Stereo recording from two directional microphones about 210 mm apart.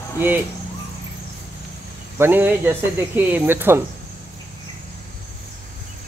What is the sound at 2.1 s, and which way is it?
Speech, 10° right (ahead or behind).